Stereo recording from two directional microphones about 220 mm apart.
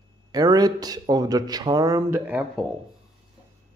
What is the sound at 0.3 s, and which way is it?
Speech, 15° right (ahead or behind).